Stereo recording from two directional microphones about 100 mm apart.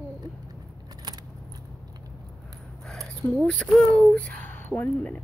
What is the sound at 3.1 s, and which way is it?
Speech, centre (ahead or behind).